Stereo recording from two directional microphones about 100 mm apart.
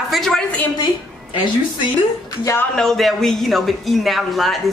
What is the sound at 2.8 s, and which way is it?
Speech, centre (ahead or behind).